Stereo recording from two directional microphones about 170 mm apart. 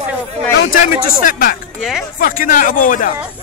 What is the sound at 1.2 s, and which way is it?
Speech, 55° left (ahead or behind).